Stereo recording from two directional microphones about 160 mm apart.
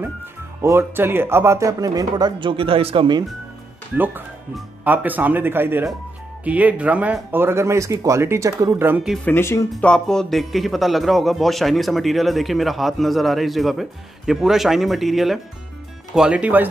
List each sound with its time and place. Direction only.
0.6 s speech: 15° right (ahead or behind)
3.9 s speech: 10° right (ahead or behind)
9.2 s speech: 15° left (ahead or behind)
9.7 s speech: 5° left (ahead or behind)